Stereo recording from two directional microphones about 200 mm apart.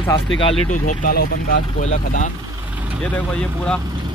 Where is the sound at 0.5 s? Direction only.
40° left (ahead or behind).